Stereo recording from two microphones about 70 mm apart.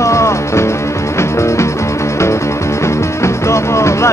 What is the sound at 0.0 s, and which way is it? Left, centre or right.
Music, left.